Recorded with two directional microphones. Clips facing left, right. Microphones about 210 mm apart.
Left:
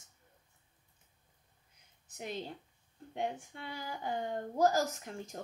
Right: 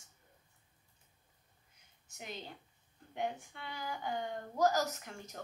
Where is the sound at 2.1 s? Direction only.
35° left (ahead or behind).